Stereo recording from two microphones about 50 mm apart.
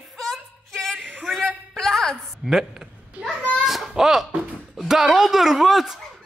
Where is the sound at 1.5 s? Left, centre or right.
Centre.